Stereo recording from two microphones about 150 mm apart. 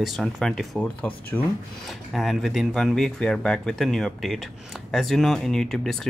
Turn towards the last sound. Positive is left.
turn(degrees=0)  # may be behind; listen again after turning